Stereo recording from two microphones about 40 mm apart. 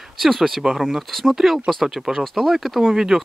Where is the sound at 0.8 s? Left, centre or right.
Centre.